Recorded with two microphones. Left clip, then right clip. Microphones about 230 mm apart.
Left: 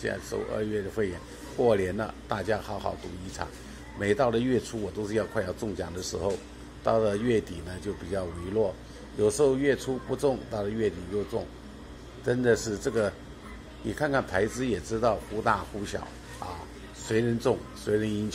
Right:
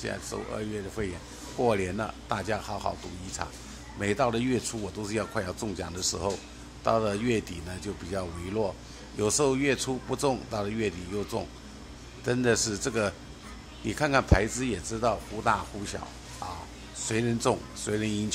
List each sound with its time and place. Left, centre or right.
0.0 s speech: centre
12.3 s speech: centre
17.0 s speech: centre